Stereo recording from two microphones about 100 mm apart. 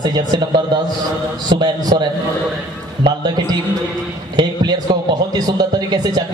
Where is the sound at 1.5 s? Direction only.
50° right (ahead or behind).